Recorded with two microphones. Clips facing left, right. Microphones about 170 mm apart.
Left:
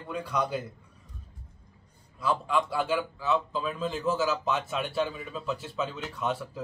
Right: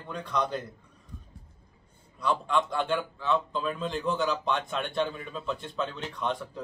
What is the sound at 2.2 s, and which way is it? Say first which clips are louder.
A man's voice: even; 5° left (ahead or behind).